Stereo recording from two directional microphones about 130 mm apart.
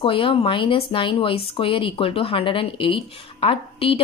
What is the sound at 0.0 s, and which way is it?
Speech, 40° left (ahead or behind).